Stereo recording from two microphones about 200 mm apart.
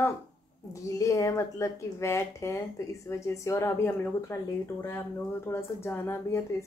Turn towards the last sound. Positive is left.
turn(degrees=10)  # may be behind; listen again after turning